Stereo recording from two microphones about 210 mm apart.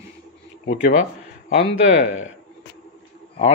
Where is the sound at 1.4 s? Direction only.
40° left (ahead or behind).